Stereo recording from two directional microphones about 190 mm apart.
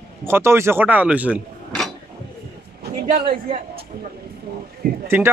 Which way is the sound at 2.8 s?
55° right (ahead or behind).